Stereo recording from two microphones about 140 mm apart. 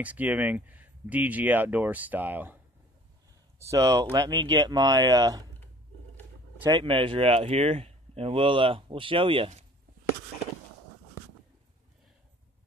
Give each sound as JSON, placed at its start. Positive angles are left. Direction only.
{"t": 0.0, "sound": "speech", "side_deg": -10}
{"t": 6.6, "sound": "speech", "side_deg": -40}